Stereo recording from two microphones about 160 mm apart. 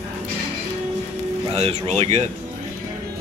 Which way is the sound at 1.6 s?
40° right (ahead or behind).